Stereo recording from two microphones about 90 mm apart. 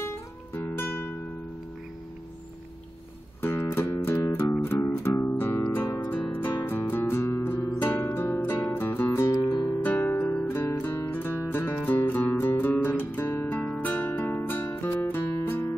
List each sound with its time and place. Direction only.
0.0 s music: 25° left (ahead or behind)
3.4 s music: 25° left (ahead or behind)
6.0 s music: 15° left (ahead or behind)
9.3 s music: 40° left (ahead or behind)
9.8 s music: 20° left (ahead or behind)